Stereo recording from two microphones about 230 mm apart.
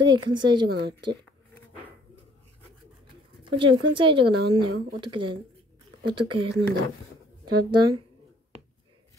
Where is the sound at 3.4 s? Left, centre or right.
Right.